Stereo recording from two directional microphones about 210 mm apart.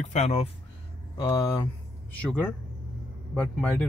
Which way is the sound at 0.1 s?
30° left (ahead or behind).